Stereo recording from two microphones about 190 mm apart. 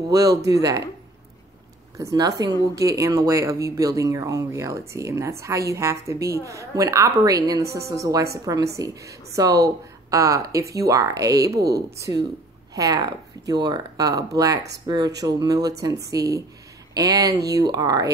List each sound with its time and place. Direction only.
0.1 s speech: 20° right (ahead or behind)
2.0 s speech: 15° right (ahead or behind)